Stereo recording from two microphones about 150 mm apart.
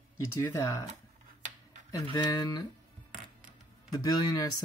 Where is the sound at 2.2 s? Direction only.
25° left (ahead or behind).